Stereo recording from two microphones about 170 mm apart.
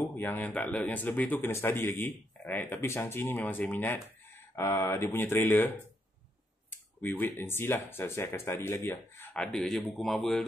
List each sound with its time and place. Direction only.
0.2 s speech: 10° left (ahead or behind)
7.0 s speech: 10° left (ahead or behind)